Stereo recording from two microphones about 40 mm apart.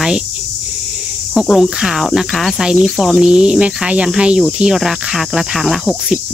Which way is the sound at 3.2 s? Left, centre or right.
Right.